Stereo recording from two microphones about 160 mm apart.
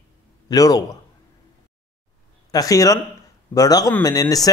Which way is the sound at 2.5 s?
20° left (ahead or behind).